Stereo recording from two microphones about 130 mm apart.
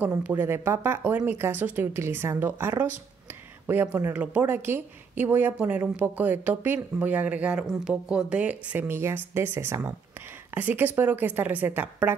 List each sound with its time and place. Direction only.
0.0 s speech: 15° right (ahead or behind)